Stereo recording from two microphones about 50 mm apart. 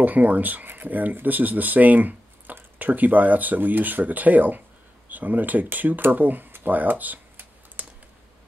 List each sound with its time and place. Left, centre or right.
0.0 s speech: right